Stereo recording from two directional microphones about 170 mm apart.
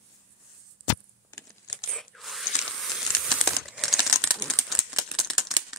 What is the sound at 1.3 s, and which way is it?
Computer keyboard, 15° left (ahead or behind).